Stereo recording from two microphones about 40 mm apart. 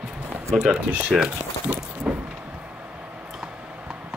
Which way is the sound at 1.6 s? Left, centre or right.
Right.